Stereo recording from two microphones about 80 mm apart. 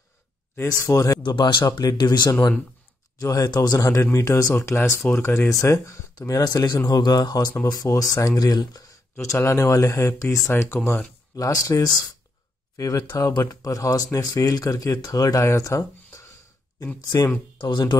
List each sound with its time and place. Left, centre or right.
0.7 s speech: left
1.2 s speech: left
3.2 s speech: left
3.9 s speech: left
5.5 s speech: left
9.5 s speech: left
11.3 s speech: left
15.4 s speech: left
17.6 s speech: left